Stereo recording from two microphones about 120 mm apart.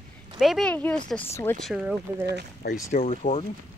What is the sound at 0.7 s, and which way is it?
Speech, 10° left (ahead or behind).